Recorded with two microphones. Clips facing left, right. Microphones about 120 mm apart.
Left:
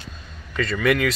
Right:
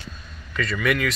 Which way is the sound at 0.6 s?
30° left (ahead or behind).